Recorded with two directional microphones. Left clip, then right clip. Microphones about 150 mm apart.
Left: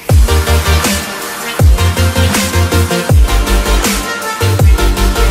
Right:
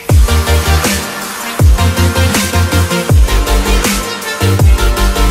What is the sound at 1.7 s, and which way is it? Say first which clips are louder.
Music: right 3 dB; centre (ahead or behind).